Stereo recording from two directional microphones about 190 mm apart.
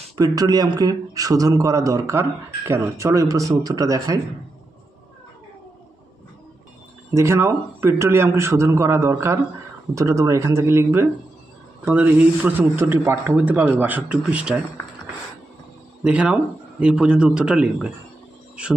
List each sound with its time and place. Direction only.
0.2 s speech: 20° right (ahead or behind)
7.2 s speech: 15° right (ahead or behind)
16.0 s speech: 5° right (ahead or behind)